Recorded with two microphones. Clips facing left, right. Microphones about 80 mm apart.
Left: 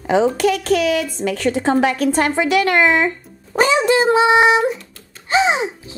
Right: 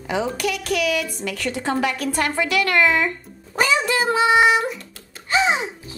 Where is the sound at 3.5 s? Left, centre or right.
Left.